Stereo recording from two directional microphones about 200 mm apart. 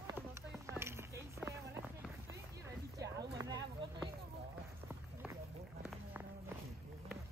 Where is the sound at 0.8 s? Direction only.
15° right (ahead or behind).